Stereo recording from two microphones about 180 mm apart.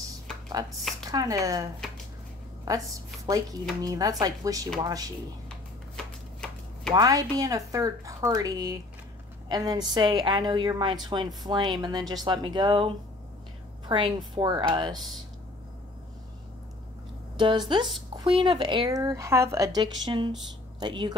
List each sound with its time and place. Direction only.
1.1 s speech: 20° right (ahead or behind)
3.3 s speech: 20° right (ahead or behind)
6.9 s speech: 20° right (ahead or behind)
17.4 s speech: 25° right (ahead or behind)